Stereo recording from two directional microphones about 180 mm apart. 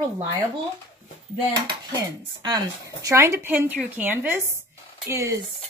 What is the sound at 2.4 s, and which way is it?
Speech, 20° right (ahead or behind).